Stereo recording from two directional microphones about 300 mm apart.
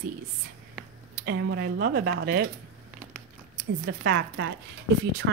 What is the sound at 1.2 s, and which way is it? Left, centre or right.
Speech, right.